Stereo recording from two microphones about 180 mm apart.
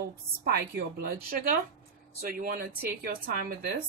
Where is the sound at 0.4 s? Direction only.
60° right (ahead or behind).